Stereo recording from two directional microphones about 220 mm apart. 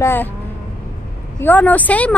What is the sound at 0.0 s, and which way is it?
Speech, 10° left (ahead or behind).